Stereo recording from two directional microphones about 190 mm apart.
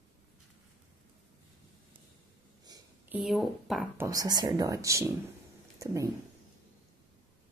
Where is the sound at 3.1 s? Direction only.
Centre (ahead or behind).